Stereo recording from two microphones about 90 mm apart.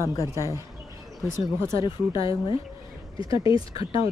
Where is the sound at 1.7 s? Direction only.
65° left (ahead or behind).